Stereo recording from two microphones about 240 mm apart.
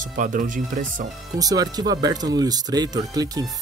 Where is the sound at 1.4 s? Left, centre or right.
Centre.